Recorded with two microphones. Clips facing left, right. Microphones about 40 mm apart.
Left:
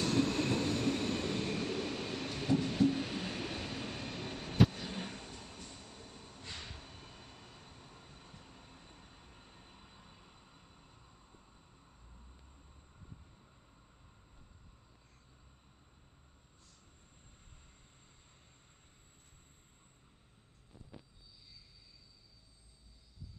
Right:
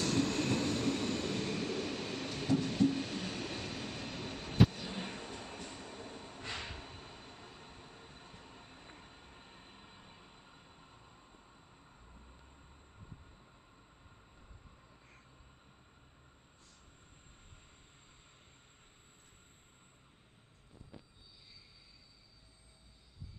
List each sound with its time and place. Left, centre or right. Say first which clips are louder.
0.0 s vehicle: left 1 dB; centre
4.9 s vehicle: right 1 dB; centre
5.2 s vehicle: right 4 dB; right
5.7 s train: right 5 dB; right
6.4 s a sound: right 5 dB; right
6.9 s train: right 3 dB; right